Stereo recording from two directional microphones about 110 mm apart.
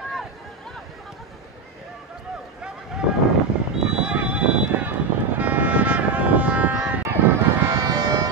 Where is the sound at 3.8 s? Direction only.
10° right (ahead or behind).